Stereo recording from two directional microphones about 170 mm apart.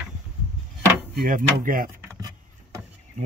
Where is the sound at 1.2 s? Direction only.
55° right (ahead or behind).